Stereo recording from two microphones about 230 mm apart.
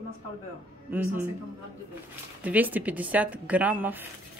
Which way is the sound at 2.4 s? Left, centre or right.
Centre.